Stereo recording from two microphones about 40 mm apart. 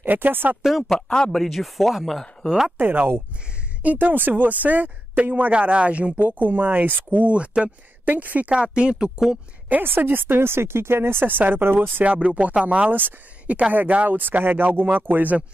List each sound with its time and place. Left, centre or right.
0.0 s speech: right
0.8 s a man's voice: centre
1.3 s speech: centre
2.8 s speech: right
5.5 s speech: right
8.5 s speech: right
9.8 s speech: right
11.2 s speech: right
12.0 s speech: right
13.7 s speech: right